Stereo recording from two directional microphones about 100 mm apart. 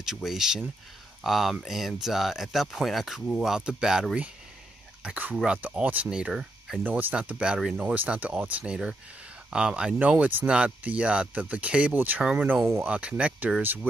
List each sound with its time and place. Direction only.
0.0 s speech: 5° right (ahead or behind)
6.8 s speech: 20° right (ahead or behind)